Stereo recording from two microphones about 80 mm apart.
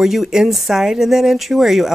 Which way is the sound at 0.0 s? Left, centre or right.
Centre.